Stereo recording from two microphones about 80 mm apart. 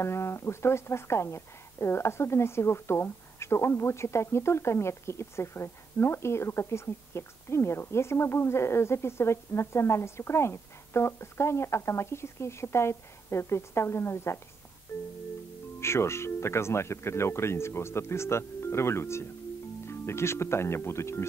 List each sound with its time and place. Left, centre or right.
0.0 s a woman's voice: left
14.9 s music: left
15.8 s a woman's voice: left